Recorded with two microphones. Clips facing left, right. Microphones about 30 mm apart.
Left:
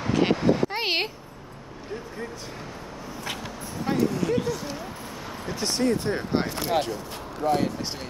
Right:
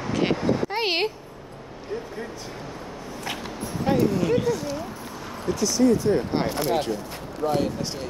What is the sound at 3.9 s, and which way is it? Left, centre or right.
Speech, centre.